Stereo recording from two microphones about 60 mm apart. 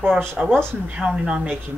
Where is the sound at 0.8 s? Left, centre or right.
Centre.